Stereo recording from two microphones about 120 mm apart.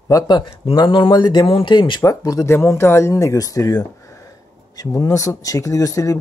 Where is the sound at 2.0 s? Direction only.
30° left (ahead or behind).